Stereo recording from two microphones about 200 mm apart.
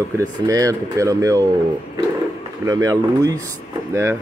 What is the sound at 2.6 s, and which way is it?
Speech, 20° right (ahead or behind).